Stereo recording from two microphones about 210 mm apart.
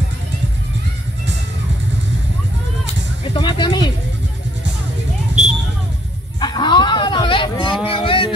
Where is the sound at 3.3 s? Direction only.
20° left (ahead or behind).